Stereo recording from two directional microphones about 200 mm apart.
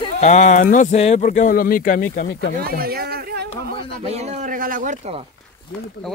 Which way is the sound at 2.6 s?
50° right (ahead or behind).